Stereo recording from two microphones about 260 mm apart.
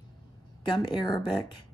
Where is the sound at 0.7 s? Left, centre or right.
Centre.